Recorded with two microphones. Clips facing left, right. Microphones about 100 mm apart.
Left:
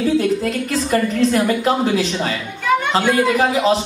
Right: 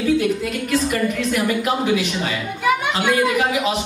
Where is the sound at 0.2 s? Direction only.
35° left (ahead or behind).